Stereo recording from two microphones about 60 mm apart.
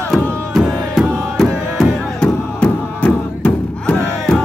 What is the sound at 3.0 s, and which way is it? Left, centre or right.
Music, left.